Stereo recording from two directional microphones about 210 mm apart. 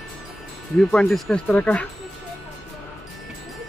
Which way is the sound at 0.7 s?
Centre (ahead or behind).